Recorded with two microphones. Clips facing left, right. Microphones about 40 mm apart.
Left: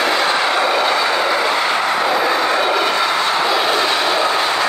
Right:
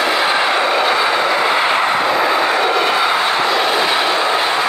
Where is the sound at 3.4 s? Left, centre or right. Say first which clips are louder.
Right 1 dB; centre.